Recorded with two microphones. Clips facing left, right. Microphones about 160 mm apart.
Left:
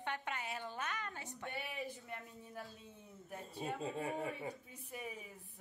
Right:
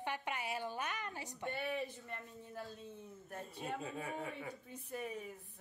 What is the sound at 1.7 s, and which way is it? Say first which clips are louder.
Speech: right 3 dB; 10° left (ahead or behind).